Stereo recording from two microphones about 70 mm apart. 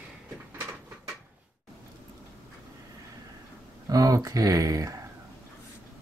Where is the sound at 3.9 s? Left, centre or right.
Right.